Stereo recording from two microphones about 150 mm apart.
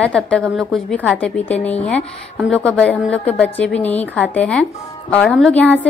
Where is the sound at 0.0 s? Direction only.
5° left (ahead or behind).